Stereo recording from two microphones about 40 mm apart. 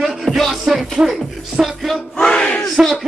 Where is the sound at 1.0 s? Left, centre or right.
Right.